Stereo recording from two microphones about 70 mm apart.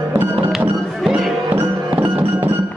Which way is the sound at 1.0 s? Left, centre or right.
Centre.